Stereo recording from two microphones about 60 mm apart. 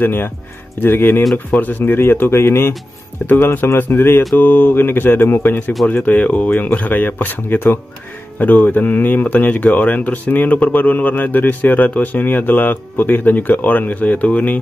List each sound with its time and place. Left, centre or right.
0.0 s speech: left
6.0 s speech: left